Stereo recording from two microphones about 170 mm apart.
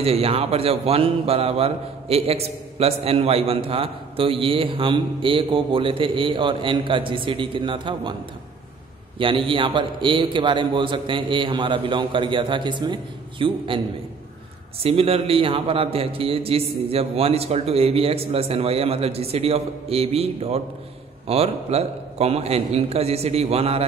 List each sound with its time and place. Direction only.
0.0 s speech: 35° right (ahead or behind)
9.2 s a man's voice: 30° right (ahead or behind)
14.8 s speech: 35° right (ahead or behind)